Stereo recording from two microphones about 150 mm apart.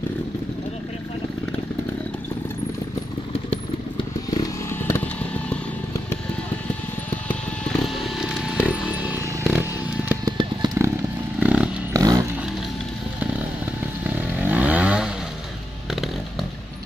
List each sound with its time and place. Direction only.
4.4 s vehicle: 20° left (ahead or behind)
7.2 s a sound: 5° left (ahead or behind); by 10.1 s 10° right (ahead or behind)
10.2 s vehicle: 25° right (ahead or behind)
11.3 s chainsaw: 5° right (ahead or behind)
11.9 s vehicle: 25° right (ahead or behind)
14.4 s vehicle: 10° right (ahead or behind)
15.9 s a sound: centre (ahead or behind)